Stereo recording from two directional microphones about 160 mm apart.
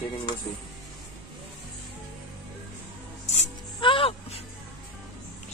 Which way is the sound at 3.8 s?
35° left (ahead or behind).